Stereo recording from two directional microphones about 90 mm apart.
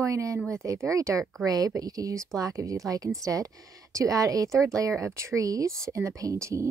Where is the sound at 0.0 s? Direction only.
35° right (ahead or behind).